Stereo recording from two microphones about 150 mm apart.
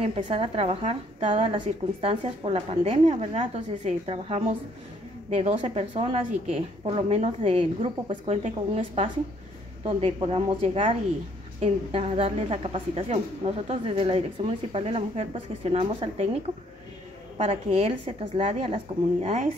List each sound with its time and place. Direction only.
0.0 s a woman's voice: 40° right (ahead or behind)
4.0 s a woman's voice: 35° right (ahead or behind)
5.3 s a woman's voice: 50° right (ahead or behind)
9.8 s a woman's voice: 40° right (ahead or behind)
17.4 s a woman's voice: 40° right (ahead or behind)